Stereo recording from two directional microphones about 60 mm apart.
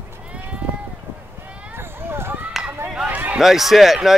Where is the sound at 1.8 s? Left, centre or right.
Right.